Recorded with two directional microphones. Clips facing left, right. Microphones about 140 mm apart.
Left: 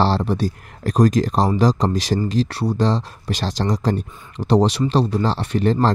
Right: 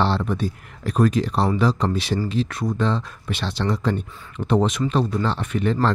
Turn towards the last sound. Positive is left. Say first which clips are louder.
# left 3 dB
turn(degrees=35)  # may be behind; listen again after turning